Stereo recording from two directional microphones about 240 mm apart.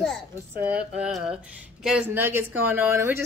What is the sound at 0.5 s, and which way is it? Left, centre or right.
Speech, centre.